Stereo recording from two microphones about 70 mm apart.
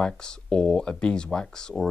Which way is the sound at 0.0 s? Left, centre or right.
Centre.